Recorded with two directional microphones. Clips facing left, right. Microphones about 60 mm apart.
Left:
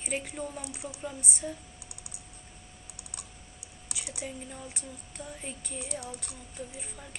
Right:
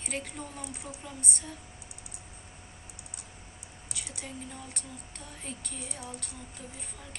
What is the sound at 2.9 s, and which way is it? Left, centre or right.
Computer keyboard, left.